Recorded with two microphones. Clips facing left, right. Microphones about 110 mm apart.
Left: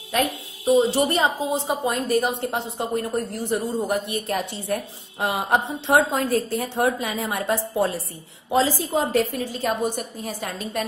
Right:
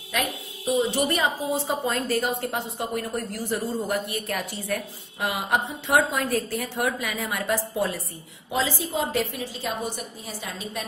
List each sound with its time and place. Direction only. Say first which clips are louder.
0.1 s a woman's voice: left 5 dB; 35° left (ahead or behind)
8.5 s a woman's voice: left 6 dB; 40° left (ahead or behind)